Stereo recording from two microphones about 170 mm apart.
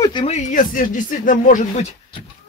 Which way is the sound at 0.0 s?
25° left (ahead or behind).